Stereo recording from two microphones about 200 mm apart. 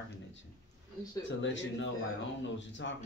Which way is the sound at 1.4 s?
65° left (ahead or behind).